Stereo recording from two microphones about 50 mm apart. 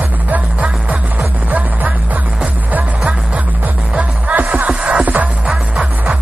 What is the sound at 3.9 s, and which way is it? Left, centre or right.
Music, right.